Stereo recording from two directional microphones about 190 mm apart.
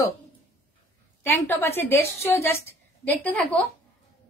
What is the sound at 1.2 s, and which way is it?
Speech, 10° left (ahead or behind).